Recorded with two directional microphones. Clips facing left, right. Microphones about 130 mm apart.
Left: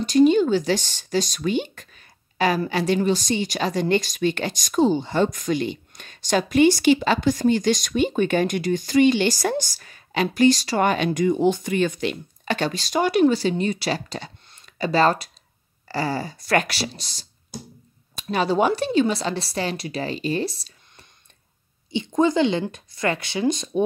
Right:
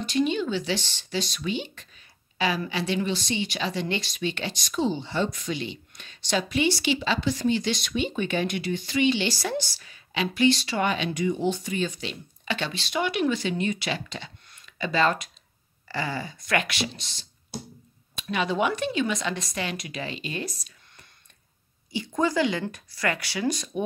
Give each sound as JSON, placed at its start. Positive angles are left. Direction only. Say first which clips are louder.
{"t": 0.0, "sound": "a woman's voice", "louder": "left 9 dB", "side_deg": 40}